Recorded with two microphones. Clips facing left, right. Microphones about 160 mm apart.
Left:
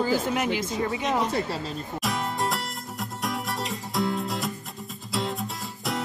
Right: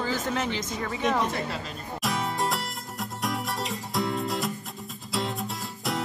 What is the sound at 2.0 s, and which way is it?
Music, centre (ahead or behind).